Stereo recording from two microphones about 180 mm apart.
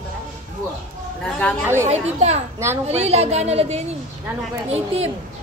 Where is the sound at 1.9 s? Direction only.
40° right (ahead or behind).